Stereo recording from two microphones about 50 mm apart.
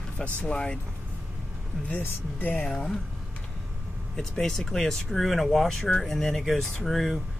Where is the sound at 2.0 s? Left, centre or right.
Left.